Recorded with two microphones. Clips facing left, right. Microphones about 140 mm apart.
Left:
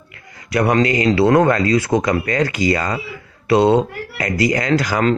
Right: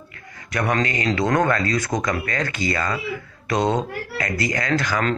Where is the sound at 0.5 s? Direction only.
25° left (ahead or behind).